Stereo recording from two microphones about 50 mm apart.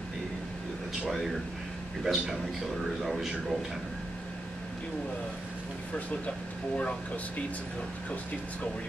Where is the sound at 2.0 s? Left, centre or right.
Centre.